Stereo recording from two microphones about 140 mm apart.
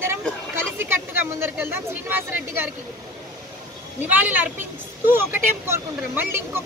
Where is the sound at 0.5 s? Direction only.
15° right (ahead or behind).